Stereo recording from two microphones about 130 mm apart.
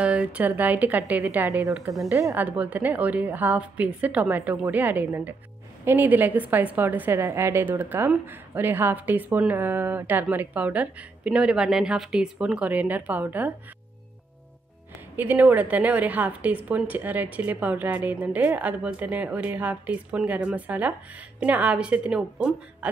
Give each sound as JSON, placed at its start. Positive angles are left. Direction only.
{"t": 0.0, "sound": "a woman's voice", "side_deg": -10}
{"t": 15.1, "sound": "a woman's voice", "side_deg": -15}